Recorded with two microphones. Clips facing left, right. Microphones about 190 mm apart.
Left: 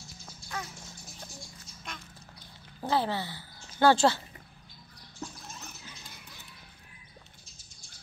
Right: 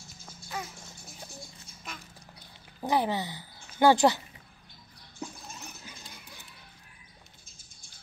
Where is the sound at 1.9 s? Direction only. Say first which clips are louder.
Even; 5° right (ahead or behind).